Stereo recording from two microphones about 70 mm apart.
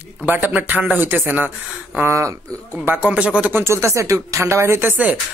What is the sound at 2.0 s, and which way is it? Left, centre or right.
Speech, right.